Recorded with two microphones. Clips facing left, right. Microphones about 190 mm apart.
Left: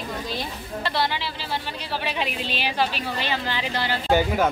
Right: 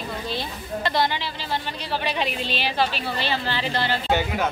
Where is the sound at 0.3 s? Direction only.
5° left (ahead or behind).